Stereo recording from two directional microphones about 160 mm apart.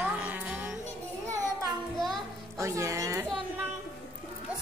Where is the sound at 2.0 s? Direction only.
Centre (ahead or behind).